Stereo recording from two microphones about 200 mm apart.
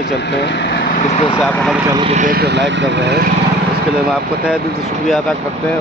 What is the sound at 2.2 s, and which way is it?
Speech, 45° right (ahead or behind).